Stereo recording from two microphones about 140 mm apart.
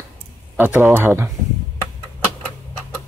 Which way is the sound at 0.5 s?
15° right (ahead or behind).